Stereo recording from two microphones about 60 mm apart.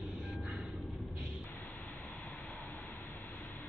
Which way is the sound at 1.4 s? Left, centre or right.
Left.